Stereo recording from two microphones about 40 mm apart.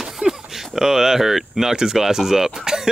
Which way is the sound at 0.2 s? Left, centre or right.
Right.